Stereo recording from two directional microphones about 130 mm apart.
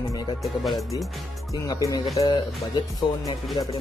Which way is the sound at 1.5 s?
25° left (ahead or behind).